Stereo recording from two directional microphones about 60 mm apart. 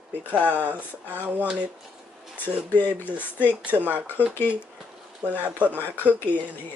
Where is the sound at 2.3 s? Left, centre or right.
Left.